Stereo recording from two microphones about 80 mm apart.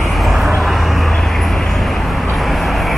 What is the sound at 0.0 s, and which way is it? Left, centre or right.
Vehicle, centre.